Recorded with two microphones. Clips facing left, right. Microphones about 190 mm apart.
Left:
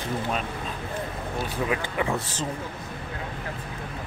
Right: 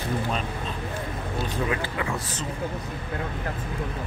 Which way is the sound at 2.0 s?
30° left (ahead or behind).